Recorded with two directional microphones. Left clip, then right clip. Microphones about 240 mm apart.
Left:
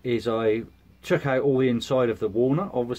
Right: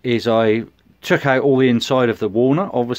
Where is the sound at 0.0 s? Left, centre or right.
Right.